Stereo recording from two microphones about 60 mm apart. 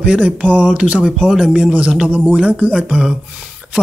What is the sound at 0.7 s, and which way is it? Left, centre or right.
Speech, centre.